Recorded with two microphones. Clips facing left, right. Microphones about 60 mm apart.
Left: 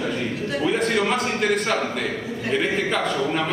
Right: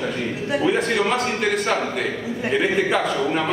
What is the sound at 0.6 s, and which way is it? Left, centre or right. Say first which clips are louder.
A man's voice: right 1 dB; centre.